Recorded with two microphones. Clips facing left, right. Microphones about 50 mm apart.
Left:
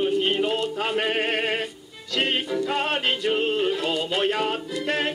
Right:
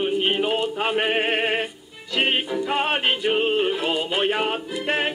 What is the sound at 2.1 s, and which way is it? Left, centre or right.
Synthetic singing, right.